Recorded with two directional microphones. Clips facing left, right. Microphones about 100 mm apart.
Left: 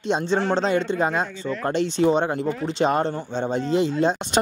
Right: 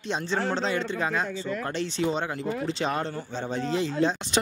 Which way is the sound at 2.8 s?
25° left (ahead or behind).